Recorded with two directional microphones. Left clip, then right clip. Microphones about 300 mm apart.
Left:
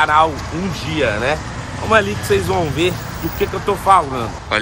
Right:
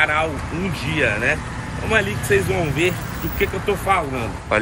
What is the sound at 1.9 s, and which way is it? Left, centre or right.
Speech, centre.